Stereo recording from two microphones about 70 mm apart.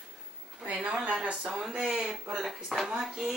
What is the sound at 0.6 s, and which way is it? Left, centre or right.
A woman's voice, centre.